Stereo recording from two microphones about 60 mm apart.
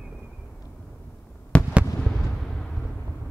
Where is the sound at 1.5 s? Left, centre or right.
Left.